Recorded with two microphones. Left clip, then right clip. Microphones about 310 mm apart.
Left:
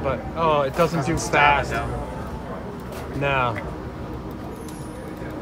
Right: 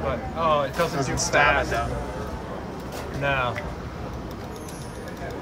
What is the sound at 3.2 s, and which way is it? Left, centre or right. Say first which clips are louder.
Speech: left 3 dB; left.